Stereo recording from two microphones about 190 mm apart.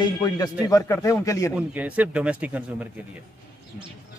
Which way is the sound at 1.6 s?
5° right (ahead or behind).